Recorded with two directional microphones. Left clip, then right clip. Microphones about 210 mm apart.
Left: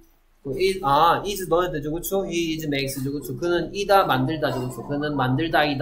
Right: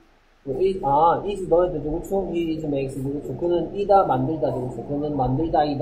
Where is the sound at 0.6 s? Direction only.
15° left (ahead or behind).